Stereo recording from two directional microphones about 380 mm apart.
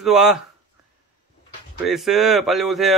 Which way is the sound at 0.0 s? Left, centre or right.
Centre.